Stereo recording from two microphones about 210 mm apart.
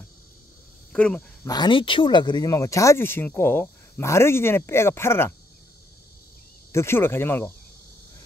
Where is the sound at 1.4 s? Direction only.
20° left (ahead or behind).